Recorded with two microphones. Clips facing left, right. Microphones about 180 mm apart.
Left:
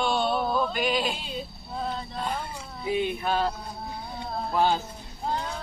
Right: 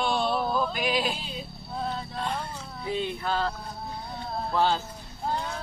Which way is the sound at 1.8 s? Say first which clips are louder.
Even; centre (ahead or behind).